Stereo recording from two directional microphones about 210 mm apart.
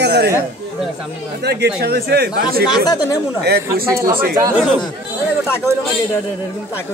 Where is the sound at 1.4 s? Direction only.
50° right (ahead or behind).